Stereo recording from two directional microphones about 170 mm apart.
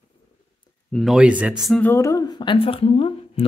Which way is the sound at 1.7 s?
10° left (ahead or behind).